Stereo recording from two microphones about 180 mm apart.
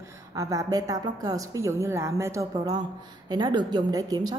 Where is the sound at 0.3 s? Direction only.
20° right (ahead or behind).